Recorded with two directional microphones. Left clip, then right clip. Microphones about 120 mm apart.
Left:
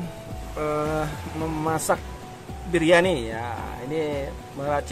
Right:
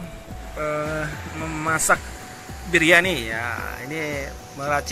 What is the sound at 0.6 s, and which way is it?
Speech, 15° left (ahead or behind).